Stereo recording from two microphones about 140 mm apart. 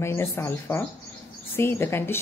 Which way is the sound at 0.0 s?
20° left (ahead or behind).